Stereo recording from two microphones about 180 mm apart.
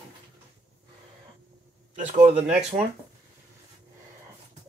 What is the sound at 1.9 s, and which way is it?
Speech, 45° right (ahead or behind).